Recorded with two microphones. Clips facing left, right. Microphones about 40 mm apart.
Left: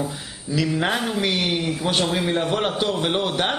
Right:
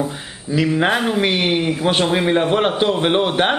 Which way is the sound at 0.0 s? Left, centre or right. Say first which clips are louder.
Right 4 dB; centre.